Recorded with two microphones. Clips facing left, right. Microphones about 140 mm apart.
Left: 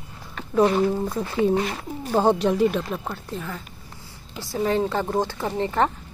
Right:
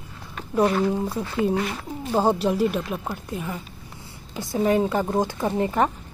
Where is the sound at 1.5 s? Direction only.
25° left (ahead or behind).